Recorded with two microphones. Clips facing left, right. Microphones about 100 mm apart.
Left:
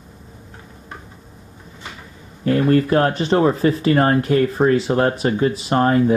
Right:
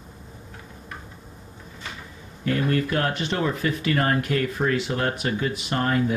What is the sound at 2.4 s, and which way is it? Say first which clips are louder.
Speech: left 8 dB; 35° left (ahead or behind).